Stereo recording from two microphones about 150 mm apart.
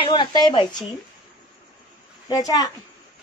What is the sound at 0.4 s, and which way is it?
Speech, 30° left (ahead or behind).